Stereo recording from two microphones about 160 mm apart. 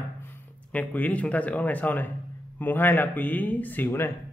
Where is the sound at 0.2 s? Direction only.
10° left (ahead or behind).